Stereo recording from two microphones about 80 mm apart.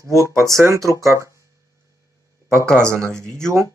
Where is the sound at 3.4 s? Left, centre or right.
Right.